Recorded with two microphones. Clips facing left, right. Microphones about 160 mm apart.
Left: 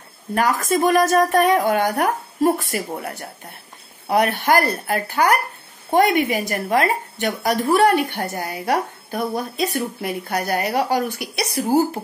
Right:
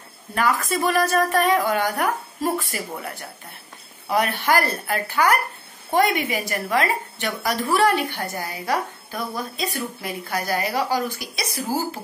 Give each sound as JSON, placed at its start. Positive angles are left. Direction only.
{"t": 0.3, "sound": "a woman's voice", "side_deg": 45}
{"t": 4.4, "sound": "a woman's voice", "side_deg": 45}